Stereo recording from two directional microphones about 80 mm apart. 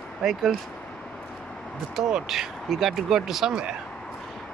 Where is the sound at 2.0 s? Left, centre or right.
Centre.